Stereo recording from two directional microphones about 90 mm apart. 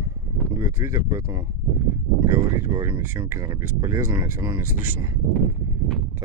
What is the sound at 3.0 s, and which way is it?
Speech, 30° right (ahead or behind).